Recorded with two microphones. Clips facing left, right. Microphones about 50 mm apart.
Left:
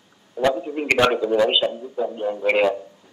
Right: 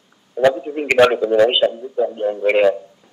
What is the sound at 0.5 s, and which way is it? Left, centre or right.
A man's voice, centre.